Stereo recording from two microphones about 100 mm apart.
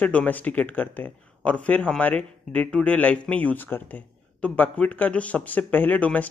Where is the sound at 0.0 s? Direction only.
15° left (ahead or behind).